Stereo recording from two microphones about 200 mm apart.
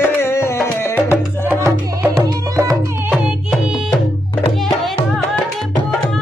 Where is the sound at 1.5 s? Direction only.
15° right (ahead or behind).